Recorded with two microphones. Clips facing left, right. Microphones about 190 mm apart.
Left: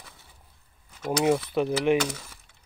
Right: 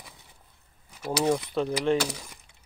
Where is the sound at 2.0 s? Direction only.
15° right (ahead or behind).